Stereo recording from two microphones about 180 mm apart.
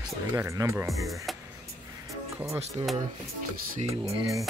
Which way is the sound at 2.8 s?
30° right (ahead or behind).